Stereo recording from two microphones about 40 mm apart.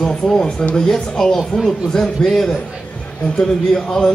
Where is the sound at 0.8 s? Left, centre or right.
Centre.